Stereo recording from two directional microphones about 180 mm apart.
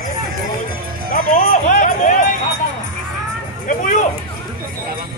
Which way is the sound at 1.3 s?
50° left (ahead or behind).